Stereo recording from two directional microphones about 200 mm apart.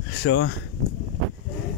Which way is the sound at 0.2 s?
70° left (ahead or behind).